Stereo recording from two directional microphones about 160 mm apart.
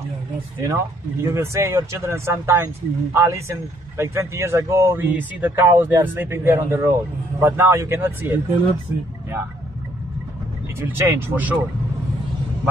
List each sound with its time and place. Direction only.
0.6 s speech: 15° right (ahead or behind)
10.8 s speech: 15° right (ahead or behind)